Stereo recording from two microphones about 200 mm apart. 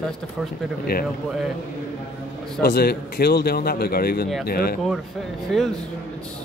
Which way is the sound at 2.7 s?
50° left (ahead or behind).